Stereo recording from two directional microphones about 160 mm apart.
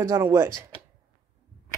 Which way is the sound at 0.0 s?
15° right (ahead or behind).